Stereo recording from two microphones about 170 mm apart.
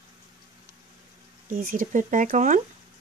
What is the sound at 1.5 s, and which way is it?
Speech, 55° right (ahead or behind).